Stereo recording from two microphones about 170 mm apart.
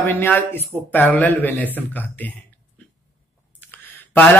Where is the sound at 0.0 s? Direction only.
10° left (ahead or behind).